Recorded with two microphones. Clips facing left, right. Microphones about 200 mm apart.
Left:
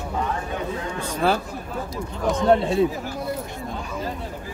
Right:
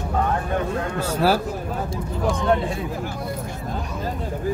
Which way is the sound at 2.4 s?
25° left (ahead or behind).